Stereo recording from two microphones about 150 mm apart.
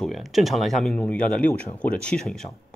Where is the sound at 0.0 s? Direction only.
Centre (ahead or behind).